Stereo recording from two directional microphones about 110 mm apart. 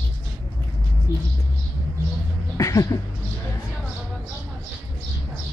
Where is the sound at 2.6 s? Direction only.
30° left (ahead or behind).